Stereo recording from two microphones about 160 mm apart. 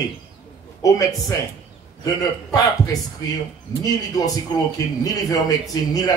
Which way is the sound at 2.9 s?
25° left (ahead or behind).